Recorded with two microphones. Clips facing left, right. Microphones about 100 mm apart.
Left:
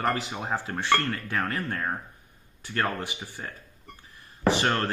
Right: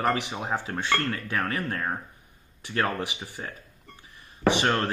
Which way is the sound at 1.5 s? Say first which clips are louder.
Right 1 dB; 5° right (ahead or behind).